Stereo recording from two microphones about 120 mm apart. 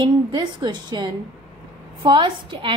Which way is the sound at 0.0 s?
40° right (ahead or behind).